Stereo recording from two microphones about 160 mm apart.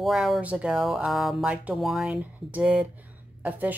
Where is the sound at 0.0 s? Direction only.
Centre (ahead or behind).